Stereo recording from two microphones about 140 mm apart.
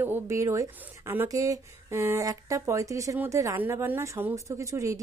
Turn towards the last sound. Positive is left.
turn(degrees=-20)  # may be behind; listen again after turning